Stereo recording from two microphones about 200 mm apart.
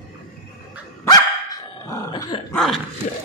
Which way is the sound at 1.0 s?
20° left (ahead or behind).